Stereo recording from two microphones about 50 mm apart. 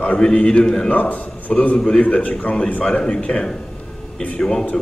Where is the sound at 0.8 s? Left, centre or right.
Left; by 4.7 s centre.